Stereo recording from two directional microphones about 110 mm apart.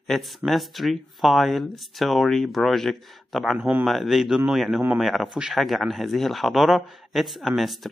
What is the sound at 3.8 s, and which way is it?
A man's voice, centre (ahead or behind).